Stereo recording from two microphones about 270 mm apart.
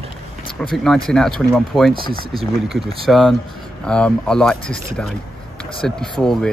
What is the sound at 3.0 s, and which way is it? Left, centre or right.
Speech, centre.